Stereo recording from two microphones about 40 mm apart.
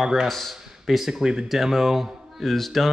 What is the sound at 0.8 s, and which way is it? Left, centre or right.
Speech, centre.